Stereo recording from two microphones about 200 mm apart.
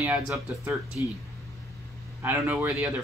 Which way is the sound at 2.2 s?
10° right (ahead or behind).